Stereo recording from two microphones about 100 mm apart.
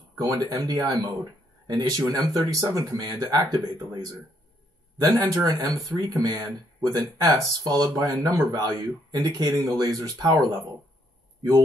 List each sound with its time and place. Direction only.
0.3 s speech: 40° right (ahead or behind)
5.3 s speech: 40° right (ahead or behind)